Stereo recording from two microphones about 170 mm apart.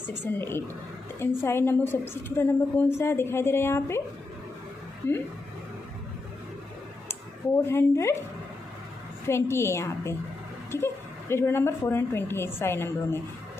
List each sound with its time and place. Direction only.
0.1 s a woman's voice: 10° left (ahead or behind)
5.0 s a woman's voice: 10° left (ahead or behind)
7.6 s a woman's voice: 15° left (ahead or behind)
9.3 s a woman's voice: 15° left (ahead or behind)